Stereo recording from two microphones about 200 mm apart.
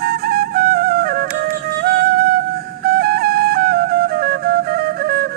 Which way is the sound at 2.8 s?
50° right (ahead or behind).